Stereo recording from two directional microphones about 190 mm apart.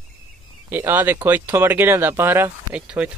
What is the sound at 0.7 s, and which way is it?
Speech, 10° right (ahead or behind).